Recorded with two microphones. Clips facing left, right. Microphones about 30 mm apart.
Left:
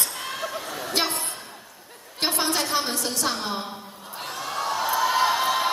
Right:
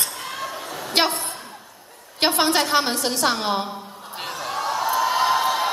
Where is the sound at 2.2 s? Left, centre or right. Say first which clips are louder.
Right 6 dB; right.